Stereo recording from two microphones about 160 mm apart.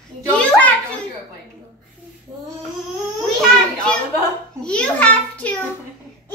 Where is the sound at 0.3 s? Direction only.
10° left (ahead or behind).